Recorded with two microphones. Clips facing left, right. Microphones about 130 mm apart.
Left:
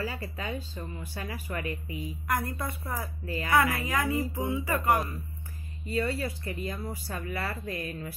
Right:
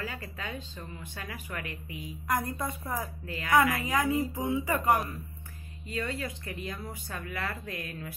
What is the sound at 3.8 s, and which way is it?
Speech, 15° right (ahead or behind).